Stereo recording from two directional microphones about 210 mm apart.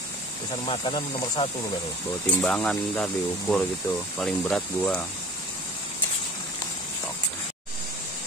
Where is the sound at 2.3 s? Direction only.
5° left (ahead or behind).